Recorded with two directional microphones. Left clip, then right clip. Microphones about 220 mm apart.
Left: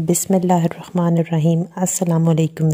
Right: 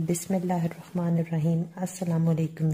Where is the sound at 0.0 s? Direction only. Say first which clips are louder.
Left 11 dB; 40° left (ahead or behind).